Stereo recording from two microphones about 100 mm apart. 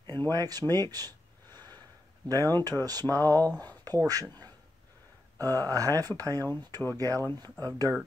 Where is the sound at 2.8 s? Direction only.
40° right (ahead or behind).